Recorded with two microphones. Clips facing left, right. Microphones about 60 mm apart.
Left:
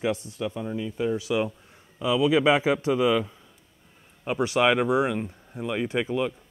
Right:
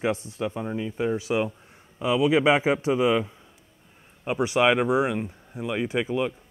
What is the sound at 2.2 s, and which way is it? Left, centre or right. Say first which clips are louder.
Speech: even; right.